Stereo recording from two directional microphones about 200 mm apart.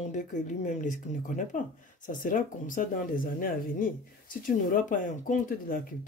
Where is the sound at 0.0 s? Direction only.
35° left (ahead or behind).